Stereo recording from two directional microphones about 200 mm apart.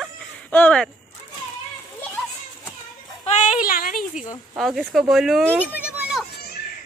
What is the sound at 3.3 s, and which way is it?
Speech, 40° left (ahead or behind).